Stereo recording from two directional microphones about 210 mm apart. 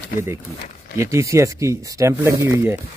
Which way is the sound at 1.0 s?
15° right (ahead or behind).